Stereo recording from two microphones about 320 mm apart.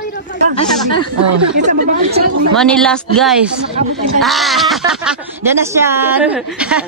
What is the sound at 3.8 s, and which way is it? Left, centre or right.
Speech, right.